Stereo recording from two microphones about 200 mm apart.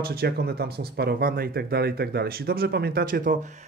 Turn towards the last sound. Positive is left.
turn(degrees=-45)  # may be behind; listen again after turning